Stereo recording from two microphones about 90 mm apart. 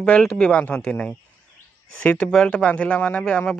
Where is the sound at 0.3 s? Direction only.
15° left (ahead or behind).